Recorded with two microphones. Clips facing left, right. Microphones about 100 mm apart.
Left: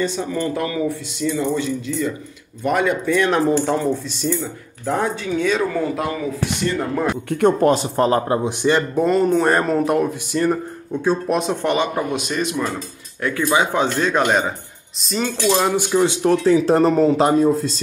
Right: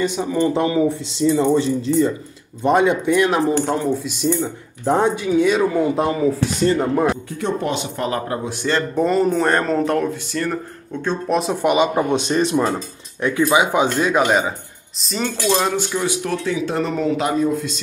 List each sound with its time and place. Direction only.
0.0 s speech: 15° right (ahead or behind)
4.2 s speech: 20° right (ahead or behind)
5.2 s speech: 10° right (ahead or behind); by 6.8 s 30° right (ahead or behind)
7.2 s speech: 55° left (ahead or behind); by 8.4 s 35° left (ahead or behind)
8.5 s speech: 15° left (ahead or behind)
8.9 s speech: centre (ahead or behind)
11.6 s speech: 15° right (ahead or behind); by 12.8 s 35° right (ahead or behind)
13.5 s speech: 15° right (ahead or behind); by 15.7 s centre (ahead or behind)
15.7 s speech: 20° left (ahead or behind)
16.2 s speech: 35° left (ahead or behind)